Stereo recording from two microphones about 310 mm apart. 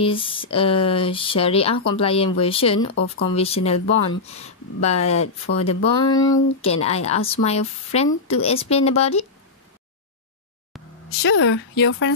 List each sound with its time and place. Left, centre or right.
0.0 s speech: centre
2.9 s speech: left
3.3 s speech: centre
11.2 s speech: left